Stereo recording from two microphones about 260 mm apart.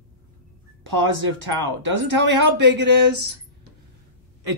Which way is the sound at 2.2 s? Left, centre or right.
Right.